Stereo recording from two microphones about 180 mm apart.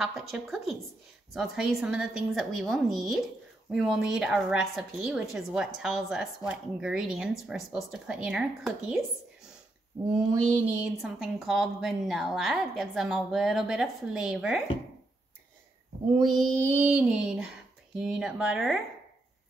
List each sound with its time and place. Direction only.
0.0 s a woman's voice: centre (ahead or behind)
9.9 s speech: 15° right (ahead or behind)
10.5 s a woman's voice: 5° right (ahead or behind)
16.3 s a woman's voice: centre (ahead or behind)
16.7 s a woman's voice: 10° right (ahead or behind)